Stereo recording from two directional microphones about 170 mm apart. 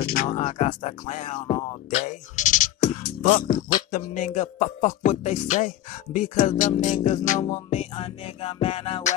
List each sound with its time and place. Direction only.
0.0 s a sound: 60° left (ahead or behind)
0.3 s speech: 40° left (ahead or behind)
3.9 s music: 50° left (ahead or behind)